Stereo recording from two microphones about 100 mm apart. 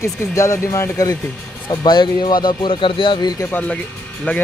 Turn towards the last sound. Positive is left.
turn(degrees=15)  # may be behind; listen again after turning